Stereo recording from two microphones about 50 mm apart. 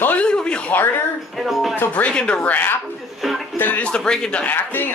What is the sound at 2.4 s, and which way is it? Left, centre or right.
A man's voice, left.